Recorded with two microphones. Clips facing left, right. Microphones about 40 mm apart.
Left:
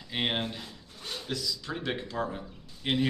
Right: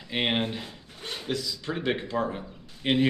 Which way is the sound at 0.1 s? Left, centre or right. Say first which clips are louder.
Right 4 dB; right.